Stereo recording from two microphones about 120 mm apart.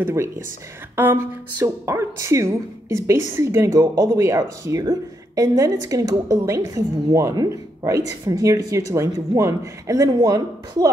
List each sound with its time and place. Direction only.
0.0 s speech: 20° right (ahead or behind)